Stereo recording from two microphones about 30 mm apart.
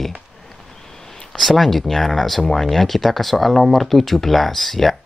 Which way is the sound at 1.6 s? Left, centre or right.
Centre.